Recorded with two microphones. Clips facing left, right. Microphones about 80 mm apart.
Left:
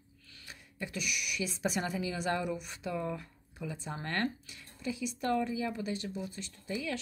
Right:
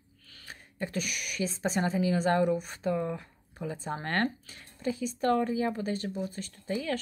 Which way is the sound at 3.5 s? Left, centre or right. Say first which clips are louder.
Right 5 dB; right.